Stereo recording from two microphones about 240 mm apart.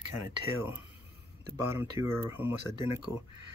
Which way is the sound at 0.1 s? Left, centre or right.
Centre.